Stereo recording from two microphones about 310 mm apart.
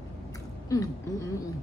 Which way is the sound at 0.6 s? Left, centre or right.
Centre.